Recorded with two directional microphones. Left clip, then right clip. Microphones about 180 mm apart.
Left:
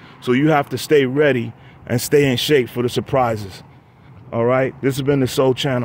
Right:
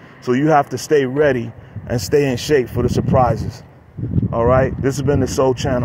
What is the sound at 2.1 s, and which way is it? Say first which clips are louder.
Speech: left 1 dB; 30° left (ahead or behind).